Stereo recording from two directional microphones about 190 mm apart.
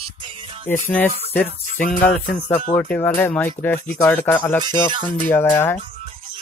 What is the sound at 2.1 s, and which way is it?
Speech, 5° left (ahead or behind).